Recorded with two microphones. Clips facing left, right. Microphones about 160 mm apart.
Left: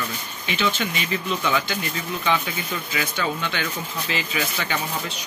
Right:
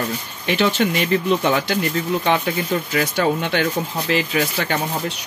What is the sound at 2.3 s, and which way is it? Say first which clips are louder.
Speech: right 7 dB; 50° right (ahead or behind).